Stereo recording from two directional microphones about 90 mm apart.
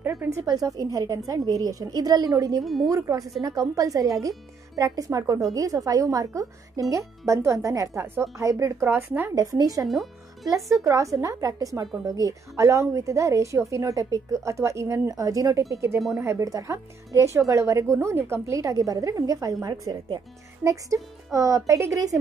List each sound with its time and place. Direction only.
0.0 s speech: 25° right (ahead or behind)
2.6 s speech: centre (ahead or behind)
2.9 s speech: 40° right (ahead or behind)
8.0 s a woman's voice: 25° right (ahead or behind)
8.4 s speech: 35° right (ahead or behind); by 9.3 s 20° right (ahead or behind)
9.3 s a woman's voice: 40° right (ahead or behind)
9.8 s speech: centre (ahead or behind)
10.5 s speech: 35° right (ahead or behind)
15.7 s a woman's voice: 30° right (ahead or behind)
19.6 s a woman's voice: 50° right (ahead or behind)
20.6 s speech: 35° right (ahead or behind)